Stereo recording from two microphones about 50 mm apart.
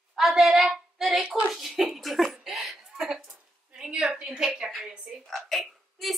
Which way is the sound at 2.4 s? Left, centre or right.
Centre.